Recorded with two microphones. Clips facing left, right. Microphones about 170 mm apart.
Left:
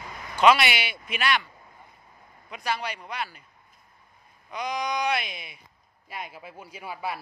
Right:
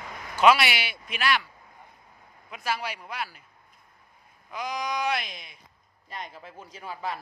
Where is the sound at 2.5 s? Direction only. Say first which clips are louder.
Left 1 dB; 5° right (ahead or behind).